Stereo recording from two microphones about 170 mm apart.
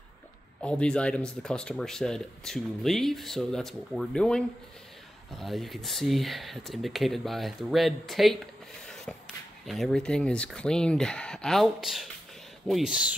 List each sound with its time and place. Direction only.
0.6 s speech: 5° left (ahead or behind)
8.8 s a sound: 5° left (ahead or behind)
9.7 s speech: centre (ahead or behind)